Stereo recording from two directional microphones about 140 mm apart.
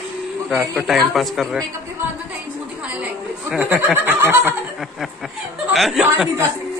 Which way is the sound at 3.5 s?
10° right (ahead or behind).